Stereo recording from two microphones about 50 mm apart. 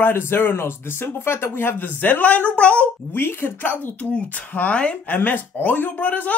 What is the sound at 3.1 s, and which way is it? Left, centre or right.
Speech, left.